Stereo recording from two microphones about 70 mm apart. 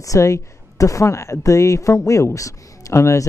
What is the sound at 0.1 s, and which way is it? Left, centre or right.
Speech, left.